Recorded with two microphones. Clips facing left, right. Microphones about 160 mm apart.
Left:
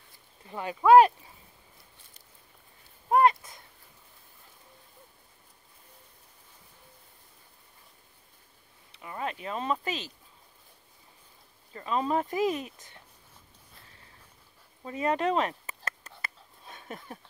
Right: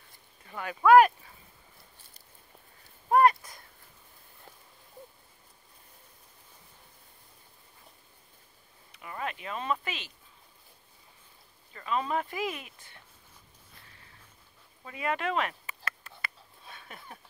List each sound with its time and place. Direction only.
0.5 s speech: 25° left (ahead or behind)
3.1 s a sound: 20° left (ahead or behind)
8.9 s speech: 25° left (ahead or behind)
11.7 s speech: 30° left (ahead or behind)
14.9 s speech: 35° left (ahead or behind)
16.6 s a sound: 40° left (ahead or behind)